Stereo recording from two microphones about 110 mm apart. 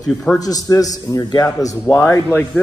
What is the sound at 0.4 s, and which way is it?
A man's voice, 35° left (ahead or behind).